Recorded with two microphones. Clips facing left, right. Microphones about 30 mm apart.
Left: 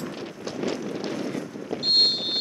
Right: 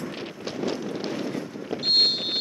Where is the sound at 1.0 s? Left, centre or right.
Centre.